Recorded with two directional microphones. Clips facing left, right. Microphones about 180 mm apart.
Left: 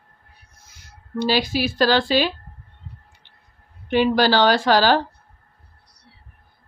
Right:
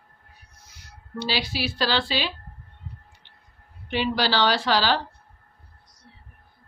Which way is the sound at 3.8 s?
50° left (ahead or behind).